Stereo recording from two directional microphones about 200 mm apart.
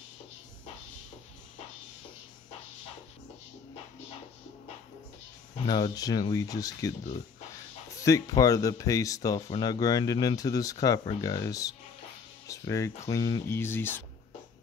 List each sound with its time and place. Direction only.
5.7 s speech: 20° left (ahead or behind)
7.9 s speech: 15° left (ahead or behind)